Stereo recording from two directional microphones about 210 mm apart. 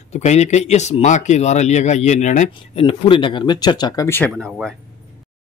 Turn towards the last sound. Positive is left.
turn(degrees=0)  # may be behind; listen again after turning